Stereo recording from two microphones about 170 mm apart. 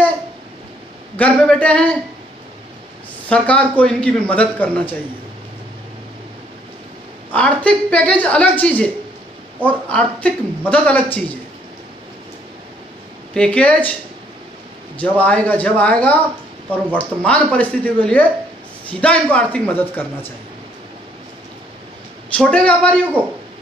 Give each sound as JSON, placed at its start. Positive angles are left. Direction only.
{"t": 1.1, "sound": "speech", "side_deg": 10}
{"t": 3.3, "sound": "speech", "side_deg": 5}
{"t": 7.3, "sound": "speech", "side_deg": 5}
{"t": 13.3, "sound": "speech", "side_deg": 5}
{"t": 15.0, "sound": "speech", "side_deg": 10}
{"t": 22.3, "sound": "a woman's voice", "side_deg": 5}